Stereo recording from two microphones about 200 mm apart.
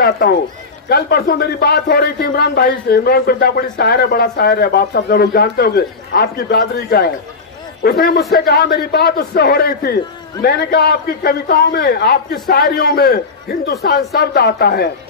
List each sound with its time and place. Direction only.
0.0 s a man's voice: 50° left (ahead or behind)